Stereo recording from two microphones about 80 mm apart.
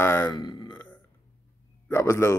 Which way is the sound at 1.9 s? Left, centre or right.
Left.